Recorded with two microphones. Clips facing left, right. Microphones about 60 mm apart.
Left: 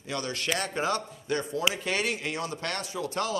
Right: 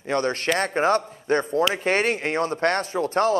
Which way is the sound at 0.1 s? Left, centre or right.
Right.